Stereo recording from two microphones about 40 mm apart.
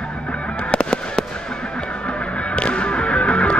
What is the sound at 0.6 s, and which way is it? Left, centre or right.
Fireworks, left.